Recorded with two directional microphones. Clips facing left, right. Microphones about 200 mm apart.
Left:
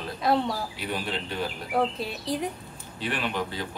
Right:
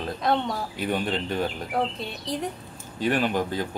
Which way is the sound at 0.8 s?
45° right (ahead or behind).